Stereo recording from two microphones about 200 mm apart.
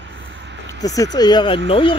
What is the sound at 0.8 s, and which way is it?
Speech, 15° left (ahead or behind).